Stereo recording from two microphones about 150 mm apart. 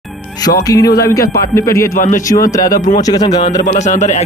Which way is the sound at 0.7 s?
25° left (ahead or behind).